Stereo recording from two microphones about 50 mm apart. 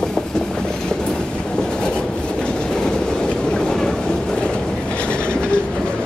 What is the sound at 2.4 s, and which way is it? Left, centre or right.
Train, centre.